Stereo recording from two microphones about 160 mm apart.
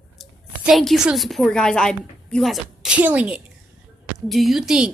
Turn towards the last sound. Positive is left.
turn(degrees=-5)  # may be behind; listen again after turning